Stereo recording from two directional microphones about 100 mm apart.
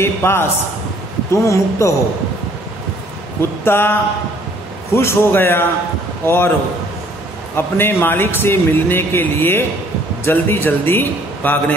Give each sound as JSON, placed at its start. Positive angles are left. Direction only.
{"t": 0.0, "sound": "a man's voice", "side_deg": 25}
{"t": 3.6, "sound": "a man's voice", "side_deg": 20}
{"t": 7.5, "sound": "a man's voice", "side_deg": 20}